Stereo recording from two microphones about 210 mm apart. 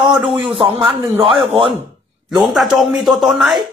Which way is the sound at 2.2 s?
Centre (ahead or behind).